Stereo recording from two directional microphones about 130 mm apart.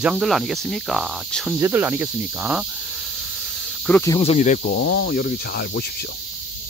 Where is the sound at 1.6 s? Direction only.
20° right (ahead or behind).